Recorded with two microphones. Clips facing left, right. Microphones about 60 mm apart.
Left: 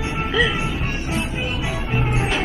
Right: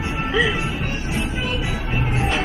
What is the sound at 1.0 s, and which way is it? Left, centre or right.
Music, centre.